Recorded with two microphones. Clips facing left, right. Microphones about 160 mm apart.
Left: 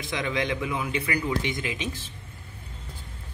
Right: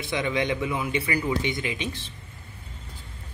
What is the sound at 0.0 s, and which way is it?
Speech, centre (ahead or behind).